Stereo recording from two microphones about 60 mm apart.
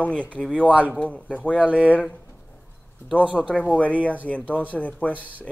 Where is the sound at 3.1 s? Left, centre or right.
Centre.